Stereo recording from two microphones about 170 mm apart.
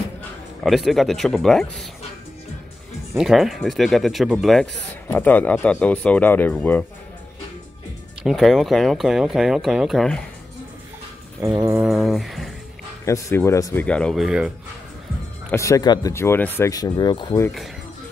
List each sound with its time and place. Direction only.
0.7 s speech: centre (ahead or behind)
3.2 s speech: centre (ahead or behind)
5.0 s speech: 10° left (ahead or behind)
8.2 s speech: centre (ahead or behind)
11.4 s a sound: 15° right (ahead or behind)
11.9 s speech: centre (ahead or behind)
13.0 s speech: 15° left (ahead or behind)
13.8 s speech: 5° left (ahead or behind)
15.5 s speech: 20° left (ahead or behind)